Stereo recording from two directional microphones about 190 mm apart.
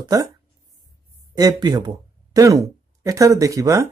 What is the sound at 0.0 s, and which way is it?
Speech, 20° right (ahead or behind).